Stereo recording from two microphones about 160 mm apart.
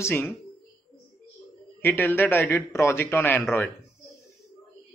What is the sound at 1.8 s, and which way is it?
A man's voice, 10° left (ahead or behind).